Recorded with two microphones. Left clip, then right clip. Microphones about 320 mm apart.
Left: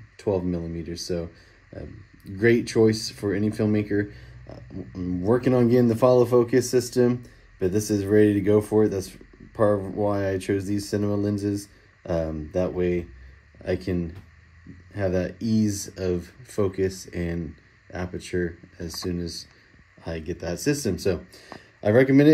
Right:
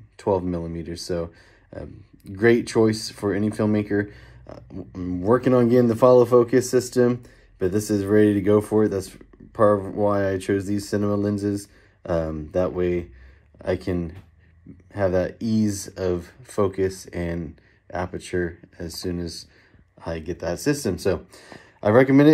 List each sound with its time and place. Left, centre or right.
0.2 s speech: centre
1.2 s speech: right
2.4 s speech: centre
4.5 s a sound: right
5.4 s speech: centre
9.7 s a sound: right
10.0 s speech: centre